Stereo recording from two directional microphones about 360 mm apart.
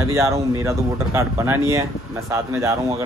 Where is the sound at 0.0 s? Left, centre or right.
Centre.